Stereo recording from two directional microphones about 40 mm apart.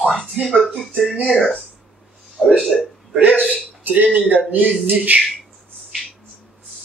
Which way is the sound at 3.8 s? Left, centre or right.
Right.